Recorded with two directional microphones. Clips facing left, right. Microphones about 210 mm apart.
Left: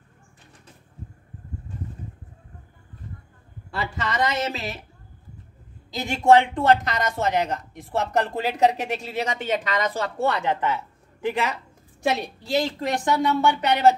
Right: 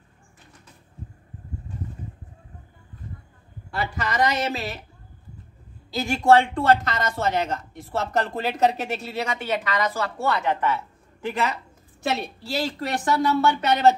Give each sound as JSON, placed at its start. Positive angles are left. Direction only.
{"t": 3.9, "sound": "speech", "side_deg": 25}
{"t": 5.9, "sound": "a woman's voice", "side_deg": 20}